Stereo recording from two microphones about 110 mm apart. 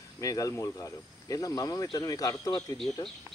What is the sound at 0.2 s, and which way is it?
Speech, 30° left (ahead or behind).